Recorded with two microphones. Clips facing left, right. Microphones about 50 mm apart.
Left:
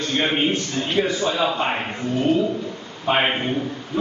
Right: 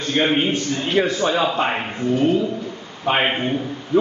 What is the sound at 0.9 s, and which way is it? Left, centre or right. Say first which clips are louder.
Speech: right 3 dB; right.